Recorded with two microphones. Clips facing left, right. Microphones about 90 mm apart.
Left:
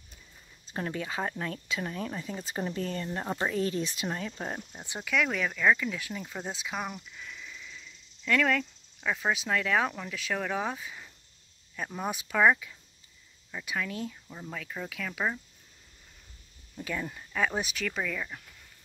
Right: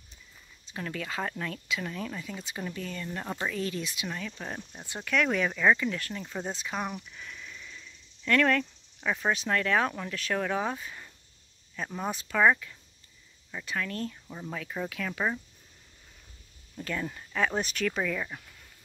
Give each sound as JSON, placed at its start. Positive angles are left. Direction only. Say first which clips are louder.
{"t": 0.7, "sound": "speech", "louder": "left 3 dB", "side_deg": 35}
{"t": 0.9, "sound": "speech", "louder": "right 2 dB", "side_deg": 20}
{"t": 1.5, "sound": "speech", "louder": "even", "side_deg": 30}
{"t": 4.6, "sound": "speech", "louder": "even", "side_deg": 15}
{"t": 5.0, "sound": "speech", "louder": "right 2 dB", "side_deg": 5}
{"t": 5.9, "sound": "speech", "louder": "right 2 dB", "side_deg": 10}
{"t": 14.3, "sound": "speech", "louder": "right 3 dB", "side_deg": -5}
{"t": 16.7, "sound": "speech", "louder": "right 1 dB", "side_deg": 5}